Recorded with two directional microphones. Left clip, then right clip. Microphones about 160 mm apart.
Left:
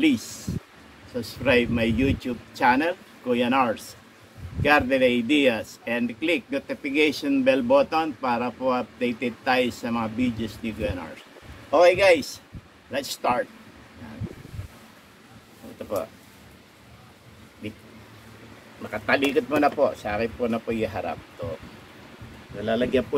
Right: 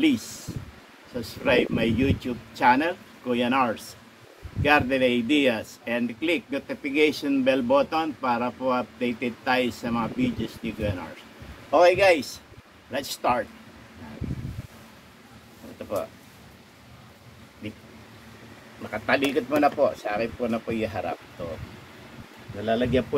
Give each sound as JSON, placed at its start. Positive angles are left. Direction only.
{"t": 1.1, "sound": "speech", "side_deg": 5}
{"t": 18.9, "sound": "speech", "side_deg": 10}
{"t": 22.6, "sound": "speech", "side_deg": 15}